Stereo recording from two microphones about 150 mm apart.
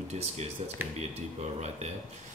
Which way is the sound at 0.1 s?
45° right (ahead or behind).